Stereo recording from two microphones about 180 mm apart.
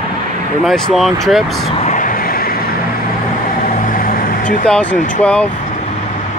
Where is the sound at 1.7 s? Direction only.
40° left (ahead or behind).